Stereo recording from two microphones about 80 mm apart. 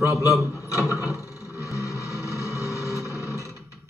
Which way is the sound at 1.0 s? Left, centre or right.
Left.